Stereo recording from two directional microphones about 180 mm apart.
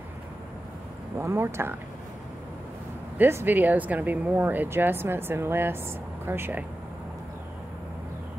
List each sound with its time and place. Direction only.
1.1 s speech: 15° right (ahead or behind)
3.2 s speech: 10° right (ahead or behind)